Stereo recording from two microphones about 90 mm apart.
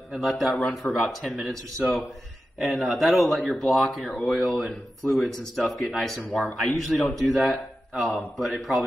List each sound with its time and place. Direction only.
0.1 s speech: centre (ahead or behind)
0.6 s speech: 15° left (ahead or behind)
0.9 s speech: centre (ahead or behind)
2.6 s speech: centre (ahead or behind)